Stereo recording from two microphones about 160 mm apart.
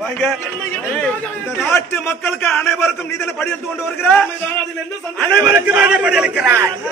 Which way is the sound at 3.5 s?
Centre (ahead or behind).